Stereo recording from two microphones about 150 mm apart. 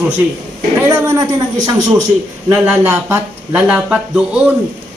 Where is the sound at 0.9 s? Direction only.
25° right (ahead or behind).